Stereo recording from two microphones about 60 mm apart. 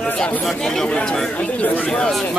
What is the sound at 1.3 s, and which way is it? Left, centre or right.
Speech, left.